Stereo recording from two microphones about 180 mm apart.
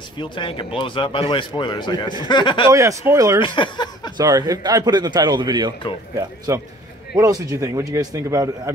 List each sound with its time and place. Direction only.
0.2 s speech: 25° left (ahead or behind)
2.7 s a man's voice: 15° right (ahead or behind)
3.3 s speech: 25° left (ahead or behind)
4.2 s a man's voice: 20° right (ahead or behind)